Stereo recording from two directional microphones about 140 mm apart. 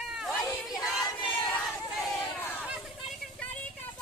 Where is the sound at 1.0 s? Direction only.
35° left (ahead or behind).